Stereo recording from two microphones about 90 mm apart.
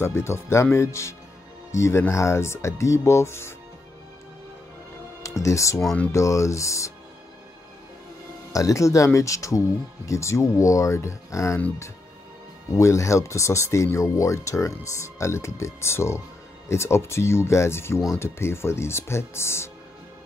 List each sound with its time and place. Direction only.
0.0 s speech: 30° left (ahead or behind)
5.2 s music: 35° left (ahead or behind)
6.1 s speech: 35° left (ahead or behind)
8.5 s speech: 35° left (ahead or behind)
12.7 s speech: 35° left (ahead or behind)